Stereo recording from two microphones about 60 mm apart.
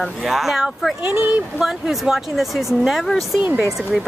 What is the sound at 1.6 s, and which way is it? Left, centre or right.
Speech, centre.